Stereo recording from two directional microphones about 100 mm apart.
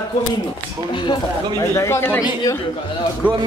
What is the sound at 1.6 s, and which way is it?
Speech, 30° left (ahead or behind).